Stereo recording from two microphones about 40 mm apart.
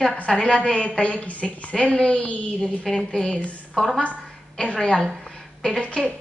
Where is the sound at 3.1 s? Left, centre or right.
Centre.